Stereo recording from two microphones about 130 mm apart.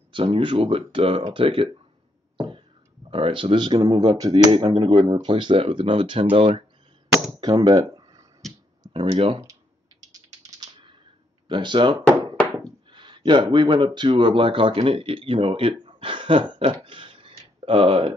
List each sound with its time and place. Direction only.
0.1 s speech: 40° right (ahead or behind)
2.3 s beatboxing: 40° right (ahead or behind)
3.1 s speech: 40° right (ahead or behind)
7.6 s a sound: 35° right (ahead or behind)
8.9 s speech: 50° right (ahead or behind)
9.4 s typing: 25° right (ahead or behind)
11.4 s speech: 40° right (ahead or behind)
16.5 s a sound: 40° right (ahead or behind)